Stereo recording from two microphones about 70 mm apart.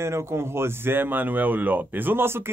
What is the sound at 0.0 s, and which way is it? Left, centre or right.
Speech, right.